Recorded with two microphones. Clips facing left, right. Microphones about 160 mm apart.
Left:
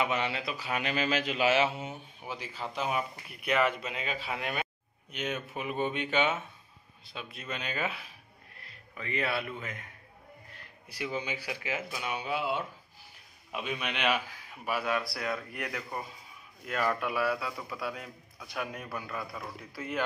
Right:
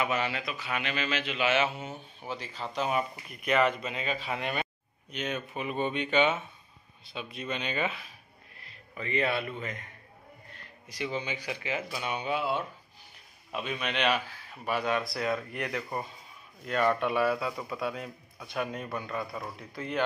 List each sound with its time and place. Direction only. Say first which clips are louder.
0.0 s speech: even; 20° left (ahead or behind)
1.9 s a man's voice: right 2 dB; 10° left (ahead or behind)
10.9 s speech: right 1 dB; 10° left (ahead or behind)